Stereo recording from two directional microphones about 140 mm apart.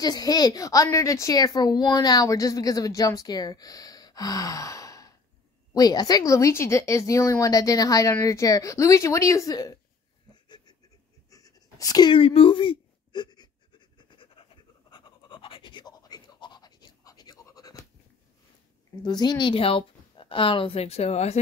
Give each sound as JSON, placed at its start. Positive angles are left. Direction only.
{"t": 0.0, "sound": "speech", "side_deg": 30}
{"t": 10.3, "sound": "goat", "side_deg": 30}
{"t": 11.2, "sound": "a sound", "side_deg": 25}
{"t": 14.9, "sound": "scratch", "side_deg": 35}
{"t": 19.0, "sound": "speech", "side_deg": 30}